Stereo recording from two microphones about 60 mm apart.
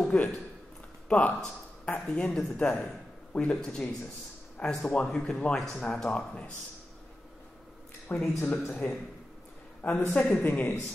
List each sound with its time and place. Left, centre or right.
0.1 s speech: centre
1.0 s a sound: left
2.0 s speech: centre
8.1 s speech: left
9.8 s speech: left